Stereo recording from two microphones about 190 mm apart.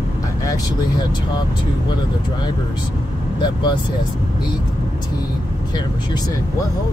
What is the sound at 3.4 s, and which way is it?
Speech, 25° left (ahead or behind).